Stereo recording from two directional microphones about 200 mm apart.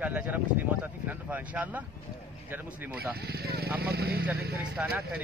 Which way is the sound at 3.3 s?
50° right (ahead or behind).